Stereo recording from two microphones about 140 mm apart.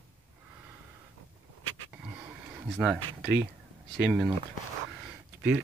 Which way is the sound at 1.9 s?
10° right (ahead or behind).